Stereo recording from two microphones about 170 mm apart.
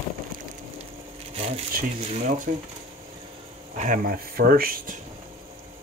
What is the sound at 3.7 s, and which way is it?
Speech, 50° right (ahead or behind).